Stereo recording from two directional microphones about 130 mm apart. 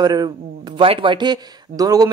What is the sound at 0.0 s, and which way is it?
Speech, 30° right (ahead or behind).